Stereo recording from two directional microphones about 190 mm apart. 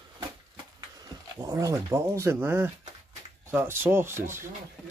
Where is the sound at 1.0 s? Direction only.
20° right (ahead or behind).